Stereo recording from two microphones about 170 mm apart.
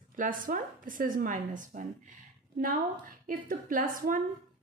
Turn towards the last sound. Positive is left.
turn(degrees=-55)  # may be behind; listen again after turning